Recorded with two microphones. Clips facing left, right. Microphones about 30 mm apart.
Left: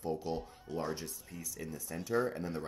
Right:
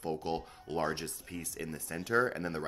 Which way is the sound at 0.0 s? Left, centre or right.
Right.